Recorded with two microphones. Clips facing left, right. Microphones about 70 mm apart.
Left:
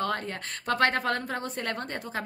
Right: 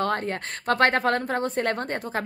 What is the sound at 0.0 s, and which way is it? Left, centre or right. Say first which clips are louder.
Speech: right 5 dB; right.